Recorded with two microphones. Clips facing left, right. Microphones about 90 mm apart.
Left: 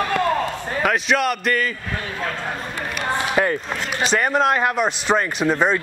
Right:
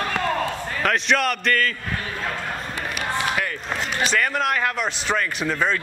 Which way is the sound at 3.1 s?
30° left (ahead or behind).